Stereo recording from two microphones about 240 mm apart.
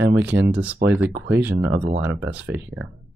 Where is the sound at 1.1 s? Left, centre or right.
Right.